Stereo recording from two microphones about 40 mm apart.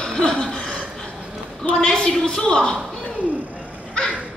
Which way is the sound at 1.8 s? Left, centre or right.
Left.